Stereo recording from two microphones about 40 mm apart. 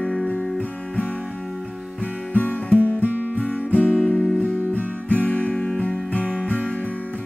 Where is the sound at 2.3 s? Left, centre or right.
Left.